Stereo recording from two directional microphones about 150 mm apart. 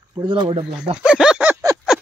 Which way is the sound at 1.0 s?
5° right (ahead or behind).